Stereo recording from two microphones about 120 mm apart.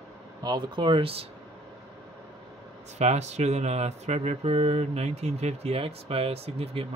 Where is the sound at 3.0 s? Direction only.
70° right (ahead or behind).